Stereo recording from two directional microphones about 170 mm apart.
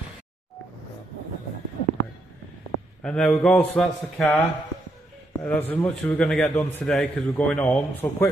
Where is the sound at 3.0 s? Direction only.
5° left (ahead or behind).